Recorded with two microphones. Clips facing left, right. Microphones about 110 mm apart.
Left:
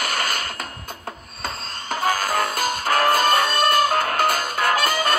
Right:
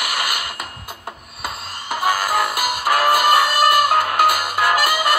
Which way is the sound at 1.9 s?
10° right (ahead or behind).